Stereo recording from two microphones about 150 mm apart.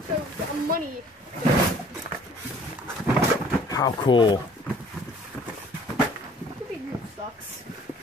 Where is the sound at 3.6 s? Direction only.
25° left (ahead or behind).